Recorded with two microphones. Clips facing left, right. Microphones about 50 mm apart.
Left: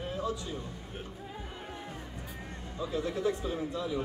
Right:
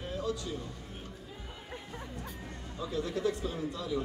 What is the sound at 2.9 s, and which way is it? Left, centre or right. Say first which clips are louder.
Speech: left 1 dB; left.